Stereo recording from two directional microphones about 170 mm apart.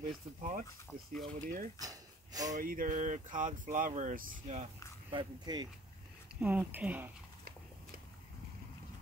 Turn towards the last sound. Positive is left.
turn(degrees=-10)  # may be behind; listen again after turning